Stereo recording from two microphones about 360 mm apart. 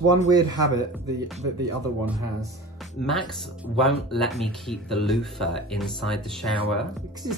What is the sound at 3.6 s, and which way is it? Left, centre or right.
Speech, centre.